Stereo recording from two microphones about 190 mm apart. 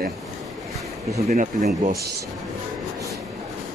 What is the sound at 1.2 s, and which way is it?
Speech, 40° right (ahead or behind).